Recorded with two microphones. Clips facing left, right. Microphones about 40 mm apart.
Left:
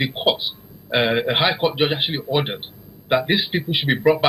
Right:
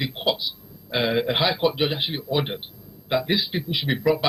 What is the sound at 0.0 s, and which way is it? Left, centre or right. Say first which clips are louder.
Speech: left 4 dB; left.